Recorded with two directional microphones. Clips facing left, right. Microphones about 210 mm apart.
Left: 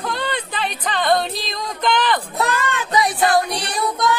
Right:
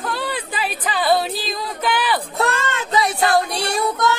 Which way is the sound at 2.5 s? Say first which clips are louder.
Left 1 dB; 25° right (ahead or behind).